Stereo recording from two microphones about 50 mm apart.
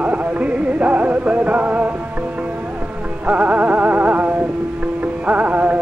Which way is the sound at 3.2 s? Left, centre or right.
Right.